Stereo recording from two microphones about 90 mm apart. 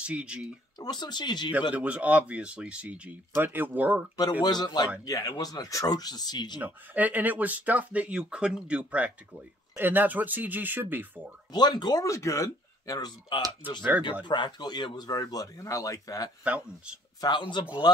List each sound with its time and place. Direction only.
0.0 s speech: 10° right (ahead or behind)
0.7 s speech: 50° left (ahead or behind)
1.7 s speech: 15° right (ahead or behind)
4.2 s speech: 50° left (ahead or behind)
6.6 s speech: 20° right (ahead or behind)
11.5 s speech: 50° left (ahead or behind)
12.1 s speech: 35° left (ahead or behind)
14.2 s speech: 60° left (ahead or behind); by 16.3 s 40° left (ahead or behind)
16.4 s speech: 10° right (ahead or behind)
17.2 s a man's voice: 55° left (ahead or behind)